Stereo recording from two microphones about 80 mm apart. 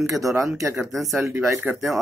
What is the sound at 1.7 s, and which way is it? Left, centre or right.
Speech, centre.